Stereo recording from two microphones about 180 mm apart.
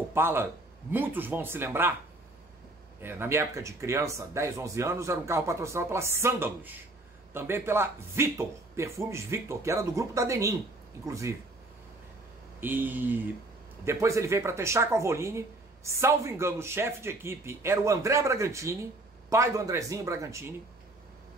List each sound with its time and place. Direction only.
0.1 s a man's voice: 15° right (ahead or behind)
3.0 s speech: 10° right (ahead or behind)
12.5 s speech: 10° right (ahead or behind)